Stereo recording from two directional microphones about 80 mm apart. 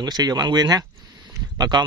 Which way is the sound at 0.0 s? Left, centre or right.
Right.